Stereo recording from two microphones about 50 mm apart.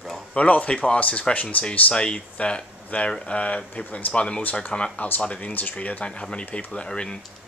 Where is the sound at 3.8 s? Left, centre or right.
Left.